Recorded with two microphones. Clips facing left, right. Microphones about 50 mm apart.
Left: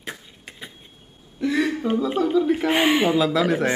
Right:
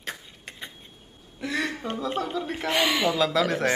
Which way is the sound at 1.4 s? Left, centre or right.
Centre.